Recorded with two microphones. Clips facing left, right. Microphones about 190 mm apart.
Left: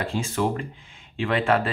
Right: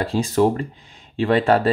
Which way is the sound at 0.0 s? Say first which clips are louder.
Right 7 dB; 35° right (ahead or behind).